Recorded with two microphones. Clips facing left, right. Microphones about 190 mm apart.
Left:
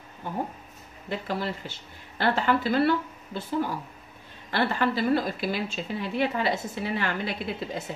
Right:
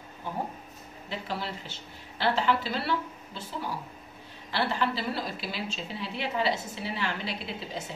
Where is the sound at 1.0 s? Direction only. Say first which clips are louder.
Left 5 dB; 50° left (ahead or behind).